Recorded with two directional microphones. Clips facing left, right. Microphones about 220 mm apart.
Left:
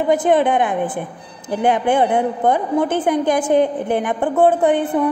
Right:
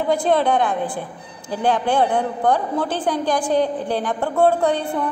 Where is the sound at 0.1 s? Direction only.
20° left (ahead or behind).